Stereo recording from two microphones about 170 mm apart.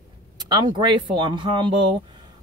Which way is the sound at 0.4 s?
25° right (ahead or behind).